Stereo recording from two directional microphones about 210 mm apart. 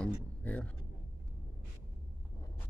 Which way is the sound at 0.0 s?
5° left (ahead or behind).